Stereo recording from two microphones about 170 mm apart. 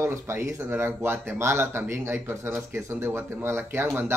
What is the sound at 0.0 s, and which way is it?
Speech, 15° right (ahead or behind).